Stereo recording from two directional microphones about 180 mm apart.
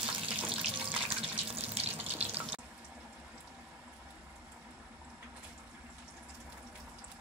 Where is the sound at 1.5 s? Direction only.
35° right (ahead or behind).